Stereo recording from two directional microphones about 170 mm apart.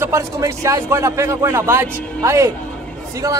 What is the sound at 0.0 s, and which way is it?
A man's voice, 15° right (ahead or behind).